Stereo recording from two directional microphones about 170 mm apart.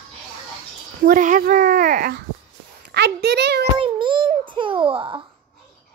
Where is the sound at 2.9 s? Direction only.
75° right (ahead or behind).